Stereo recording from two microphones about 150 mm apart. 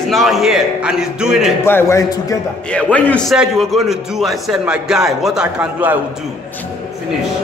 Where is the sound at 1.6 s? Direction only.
15° left (ahead or behind).